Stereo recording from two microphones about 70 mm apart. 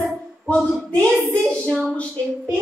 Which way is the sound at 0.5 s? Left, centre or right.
Centre.